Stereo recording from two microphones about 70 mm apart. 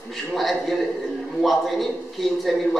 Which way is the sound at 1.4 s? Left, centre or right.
Centre.